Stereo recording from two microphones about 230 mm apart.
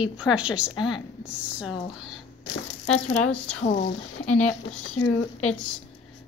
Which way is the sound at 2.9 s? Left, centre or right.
Left.